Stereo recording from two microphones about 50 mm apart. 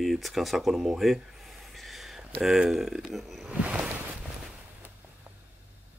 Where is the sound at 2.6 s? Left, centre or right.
Centre.